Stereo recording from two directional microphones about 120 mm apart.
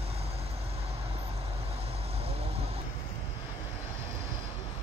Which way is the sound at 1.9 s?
55° right (ahead or behind).